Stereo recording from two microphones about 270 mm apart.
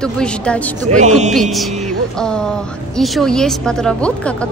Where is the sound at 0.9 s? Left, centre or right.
Right.